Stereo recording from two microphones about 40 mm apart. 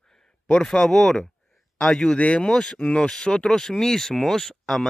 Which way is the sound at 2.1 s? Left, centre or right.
Left.